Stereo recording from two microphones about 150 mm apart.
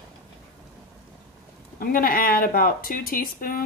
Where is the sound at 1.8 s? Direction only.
70° left (ahead or behind).